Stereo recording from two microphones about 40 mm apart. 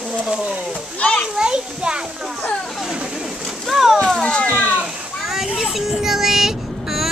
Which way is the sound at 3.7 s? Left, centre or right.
Centre.